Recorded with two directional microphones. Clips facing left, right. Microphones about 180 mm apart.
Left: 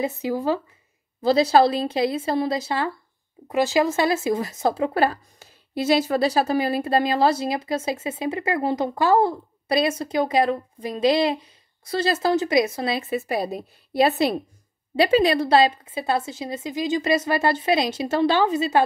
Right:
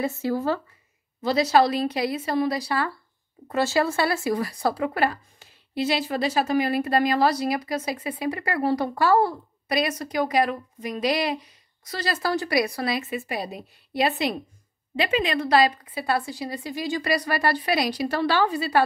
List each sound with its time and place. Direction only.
0.2 s speech: 15° left (ahead or behind)
1.2 s speech: 30° left (ahead or behind)